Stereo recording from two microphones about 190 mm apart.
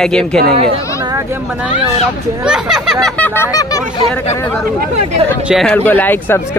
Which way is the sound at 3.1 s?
10° left (ahead or behind).